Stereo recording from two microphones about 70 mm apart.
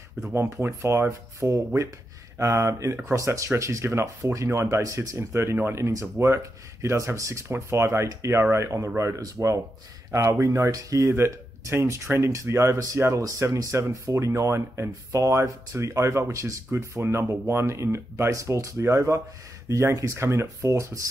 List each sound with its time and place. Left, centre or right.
0.3 s speech: right
5.3 s speech: right
10.4 s speech: right
12.7 s speech: right